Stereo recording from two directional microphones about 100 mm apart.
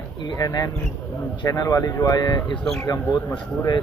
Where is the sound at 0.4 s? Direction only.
40° left (ahead or behind).